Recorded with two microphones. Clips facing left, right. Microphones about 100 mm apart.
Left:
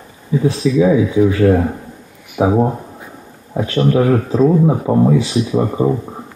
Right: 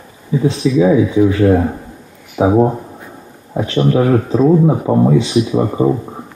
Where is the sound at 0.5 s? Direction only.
20° right (ahead or behind).